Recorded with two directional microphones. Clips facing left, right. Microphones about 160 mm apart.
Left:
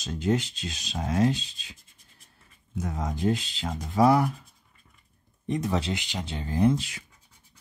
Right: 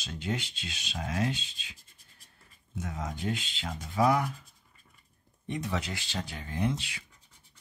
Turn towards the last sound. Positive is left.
turn(degrees=40)  # may be behind; listen again after turning